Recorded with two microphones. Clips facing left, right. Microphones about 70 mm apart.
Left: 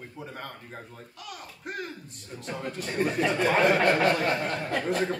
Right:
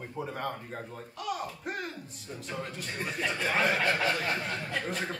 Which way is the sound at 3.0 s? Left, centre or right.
Left.